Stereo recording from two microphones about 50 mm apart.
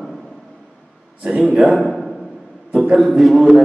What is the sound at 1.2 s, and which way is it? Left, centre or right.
Speech, centre.